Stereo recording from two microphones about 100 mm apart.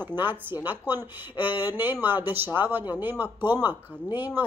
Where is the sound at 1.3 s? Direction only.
55° left (ahead or behind).